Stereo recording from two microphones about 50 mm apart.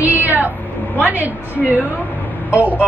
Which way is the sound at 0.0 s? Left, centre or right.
Right.